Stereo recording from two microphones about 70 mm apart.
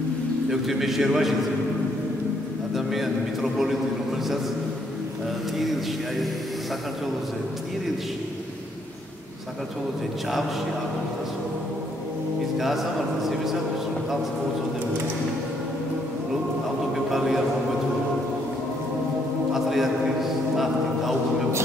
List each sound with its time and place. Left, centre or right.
0.5 s a man's voice: centre
2.7 s a man's voice: centre
5.6 s a man's voice: centre
12.5 s a man's voice: centre
16.9 s speech: centre
19.5 s a sound: centre